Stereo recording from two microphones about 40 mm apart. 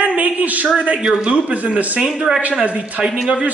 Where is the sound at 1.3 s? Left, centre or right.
Right.